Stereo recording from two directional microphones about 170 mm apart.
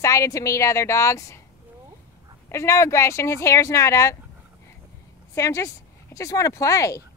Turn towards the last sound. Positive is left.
turn(degrees=20)  # may be behind; listen again after turning